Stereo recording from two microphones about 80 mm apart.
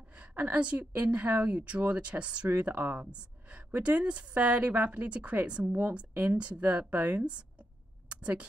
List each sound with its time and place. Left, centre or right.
0.1 s a woman's voice: centre